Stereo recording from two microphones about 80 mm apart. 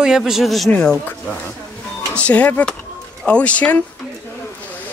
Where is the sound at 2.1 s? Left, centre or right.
Centre.